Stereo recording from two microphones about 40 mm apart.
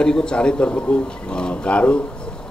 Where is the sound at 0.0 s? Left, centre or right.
Left.